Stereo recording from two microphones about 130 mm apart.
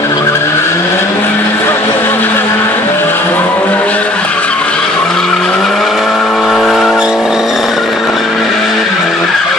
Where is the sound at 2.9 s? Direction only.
15° left (ahead or behind).